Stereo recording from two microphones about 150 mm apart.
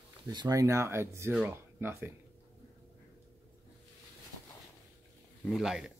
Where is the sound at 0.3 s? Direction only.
25° right (ahead or behind).